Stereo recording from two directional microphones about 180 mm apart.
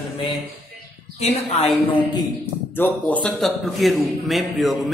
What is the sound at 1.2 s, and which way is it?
Speech, 35° left (ahead or behind).